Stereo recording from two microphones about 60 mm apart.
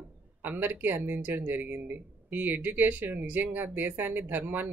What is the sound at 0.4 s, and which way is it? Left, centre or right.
Speech, right.